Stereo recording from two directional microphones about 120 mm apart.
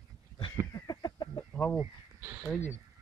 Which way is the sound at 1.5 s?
10° left (ahead or behind).